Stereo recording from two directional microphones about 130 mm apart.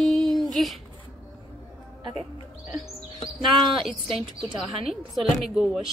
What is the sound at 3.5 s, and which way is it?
Speech, 45° right (ahead or behind).